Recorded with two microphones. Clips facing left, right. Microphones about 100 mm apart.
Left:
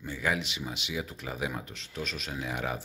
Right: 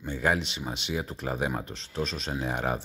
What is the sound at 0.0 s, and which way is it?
Speech, 35° right (ahead or behind).